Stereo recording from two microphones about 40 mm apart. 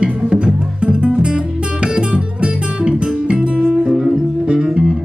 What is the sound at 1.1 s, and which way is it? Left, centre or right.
Guitar, right.